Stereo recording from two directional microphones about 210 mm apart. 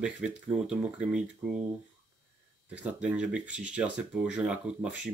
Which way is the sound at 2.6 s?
5° right (ahead or behind).